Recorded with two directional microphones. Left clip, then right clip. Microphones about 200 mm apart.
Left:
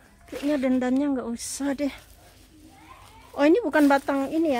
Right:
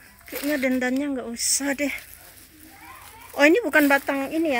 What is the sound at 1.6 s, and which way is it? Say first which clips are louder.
Speech: left 2 dB; 10° left (ahead or behind).